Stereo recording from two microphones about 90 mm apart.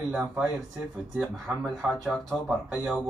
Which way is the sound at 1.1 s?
Centre (ahead or behind).